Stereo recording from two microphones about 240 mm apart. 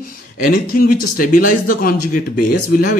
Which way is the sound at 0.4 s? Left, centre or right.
Left.